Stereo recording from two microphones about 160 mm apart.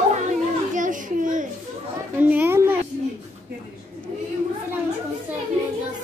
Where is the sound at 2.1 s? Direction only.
10° right (ahead or behind).